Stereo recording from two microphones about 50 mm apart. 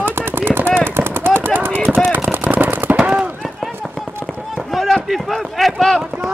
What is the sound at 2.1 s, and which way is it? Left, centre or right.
Machine gun, right.